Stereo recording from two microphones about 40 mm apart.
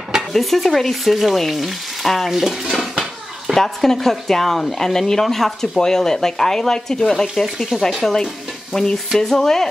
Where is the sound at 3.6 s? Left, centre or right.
Centre.